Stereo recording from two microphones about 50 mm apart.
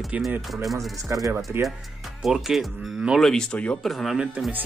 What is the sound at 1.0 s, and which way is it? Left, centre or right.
Speech, right.